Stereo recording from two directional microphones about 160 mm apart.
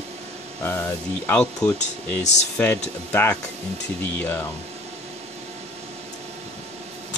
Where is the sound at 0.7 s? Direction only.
10° left (ahead or behind).